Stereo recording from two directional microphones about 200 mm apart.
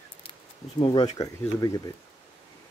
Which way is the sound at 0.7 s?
25° left (ahead or behind).